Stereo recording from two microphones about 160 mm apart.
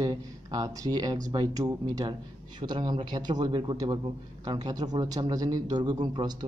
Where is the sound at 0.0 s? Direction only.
25° right (ahead or behind).